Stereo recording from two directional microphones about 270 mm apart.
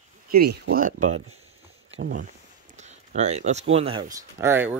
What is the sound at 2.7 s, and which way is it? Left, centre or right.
Speech, right.